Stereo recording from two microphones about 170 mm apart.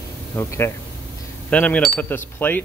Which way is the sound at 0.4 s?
15° left (ahead or behind).